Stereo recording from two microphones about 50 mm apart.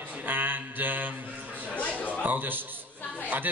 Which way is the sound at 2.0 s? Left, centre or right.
Left.